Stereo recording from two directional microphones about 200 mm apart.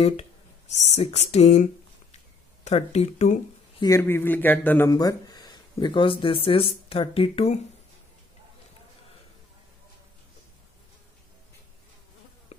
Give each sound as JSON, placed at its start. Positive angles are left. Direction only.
{"t": 0.0, "sound": "speech", "side_deg": 30}
{"t": 3.8, "sound": "speech", "side_deg": 15}